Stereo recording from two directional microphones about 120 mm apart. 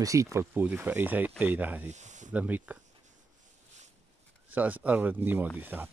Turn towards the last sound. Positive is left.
turn(degrees=-15)  # may be behind; listen again after turning